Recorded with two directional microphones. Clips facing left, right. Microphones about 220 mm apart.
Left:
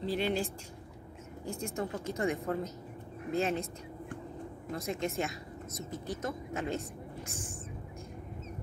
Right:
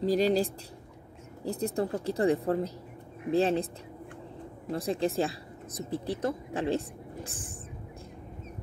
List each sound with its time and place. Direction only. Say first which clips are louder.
0.0 s speech: right 7 dB; 40° right (ahead or behind)
4.6 s speech: right 6 dB; 30° right (ahead or behind)